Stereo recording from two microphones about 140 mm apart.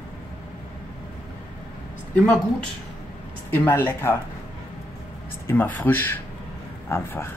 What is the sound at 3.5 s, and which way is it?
Speech, 15° left (ahead or behind).